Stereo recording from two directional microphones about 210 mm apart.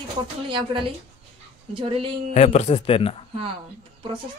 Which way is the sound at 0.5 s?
25° right (ahead or behind).